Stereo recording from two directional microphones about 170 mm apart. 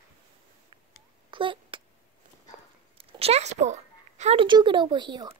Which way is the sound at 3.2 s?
40° right (ahead or behind).